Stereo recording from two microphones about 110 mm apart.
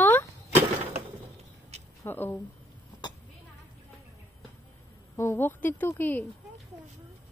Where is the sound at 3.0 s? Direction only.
40° left (ahead or behind).